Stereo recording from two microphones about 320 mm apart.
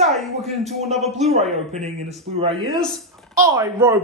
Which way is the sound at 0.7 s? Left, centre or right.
Right.